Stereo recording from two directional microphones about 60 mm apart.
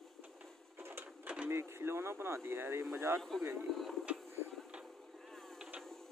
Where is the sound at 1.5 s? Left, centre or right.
Right.